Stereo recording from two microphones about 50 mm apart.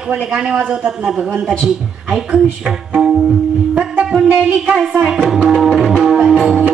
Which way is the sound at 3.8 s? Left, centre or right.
Right.